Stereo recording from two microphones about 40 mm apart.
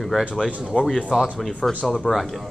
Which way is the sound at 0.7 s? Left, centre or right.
Left.